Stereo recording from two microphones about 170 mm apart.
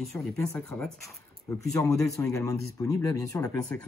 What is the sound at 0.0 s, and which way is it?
Speech, centre (ahead or behind).